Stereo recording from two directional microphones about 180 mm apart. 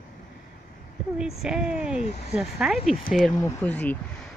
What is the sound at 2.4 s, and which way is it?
Speech, 5° right (ahead or behind).